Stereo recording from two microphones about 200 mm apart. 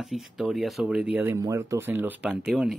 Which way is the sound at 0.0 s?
Centre (ahead or behind).